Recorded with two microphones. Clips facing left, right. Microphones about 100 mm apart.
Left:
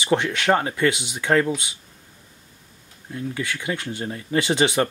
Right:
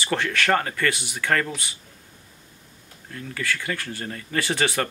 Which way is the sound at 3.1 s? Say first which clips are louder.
Left 2 dB; 20° left (ahead or behind).